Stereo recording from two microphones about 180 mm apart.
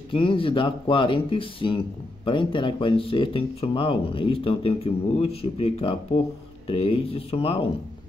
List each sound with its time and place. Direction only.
0.1 s speech: 30° left (ahead or behind)